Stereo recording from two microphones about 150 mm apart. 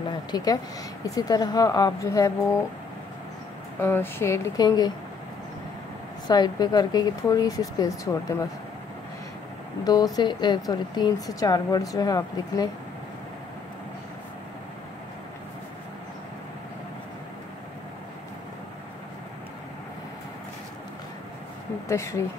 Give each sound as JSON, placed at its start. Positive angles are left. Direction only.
{"t": 0.3, "sound": "a woman's voice", "side_deg": 25}
{"t": 3.8, "sound": "a woman's voice", "side_deg": 15}
{"t": 6.2, "sound": "a woman's voice", "side_deg": 30}
{"t": 9.8, "sound": "a woman's voice", "side_deg": 25}
{"t": 21.8, "sound": "a woman's voice", "side_deg": 20}